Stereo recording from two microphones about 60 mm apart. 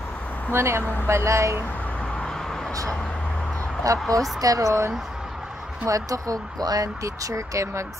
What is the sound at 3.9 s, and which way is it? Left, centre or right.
Speech, right.